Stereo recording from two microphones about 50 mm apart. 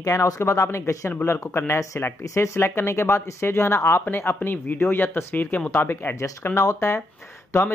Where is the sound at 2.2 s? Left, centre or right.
Left.